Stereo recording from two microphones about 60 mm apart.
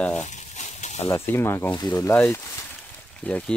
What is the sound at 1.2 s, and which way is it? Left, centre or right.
Speech, left.